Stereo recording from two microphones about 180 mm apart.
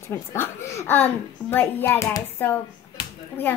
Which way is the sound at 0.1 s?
15° left (ahead or behind).